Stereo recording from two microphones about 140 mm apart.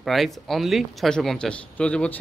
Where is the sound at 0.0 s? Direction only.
Centre (ahead or behind).